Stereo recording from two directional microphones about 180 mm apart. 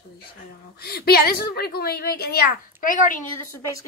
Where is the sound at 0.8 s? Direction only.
60° left (ahead or behind).